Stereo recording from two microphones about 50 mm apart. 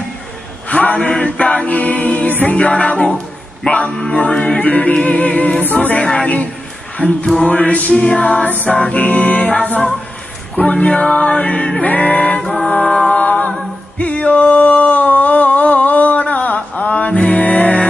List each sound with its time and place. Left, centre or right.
0.7 s a capella: left
2.5 s music: left
4.6 s music: left
5.6 s a capella: left
6.0 s music: left
7.0 s a sound: left
7.4 s music: left
7.9 s music: centre
8.9 s music: left
12.5 s choir: left
13.1 s a capella: left
13.9 s a sound: left